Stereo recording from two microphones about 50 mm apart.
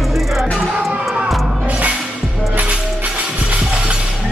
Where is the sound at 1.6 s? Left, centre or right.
Right.